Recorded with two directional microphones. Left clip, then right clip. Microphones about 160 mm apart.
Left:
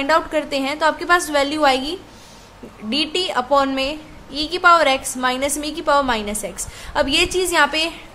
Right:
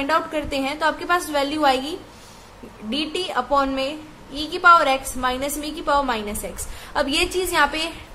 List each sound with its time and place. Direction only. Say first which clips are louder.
0.0 s a woman's voice: left 4 dB; 15° left (ahead or behind)